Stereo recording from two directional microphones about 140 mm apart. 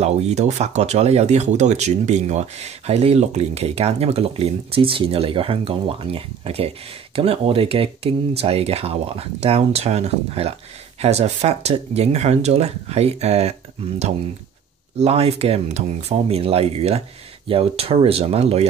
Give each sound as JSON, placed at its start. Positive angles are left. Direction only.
{"t": 0.0, "sound": "speech", "side_deg": -50}